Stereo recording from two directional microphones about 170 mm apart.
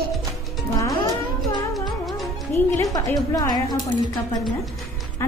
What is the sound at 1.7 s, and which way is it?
Music, centre (ahead or behind).